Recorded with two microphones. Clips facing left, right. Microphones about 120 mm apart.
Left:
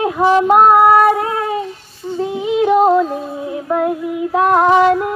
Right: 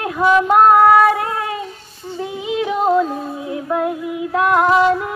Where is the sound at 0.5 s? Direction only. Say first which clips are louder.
Even; 5° left (ahead or behind).